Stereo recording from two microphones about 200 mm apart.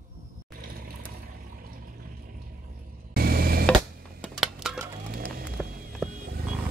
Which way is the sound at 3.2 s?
50° right (ahead or behind).